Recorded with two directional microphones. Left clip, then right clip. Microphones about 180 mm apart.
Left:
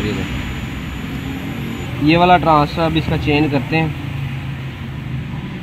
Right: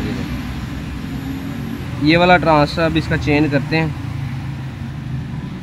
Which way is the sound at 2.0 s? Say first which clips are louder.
Even; 5° right (ahead or behind).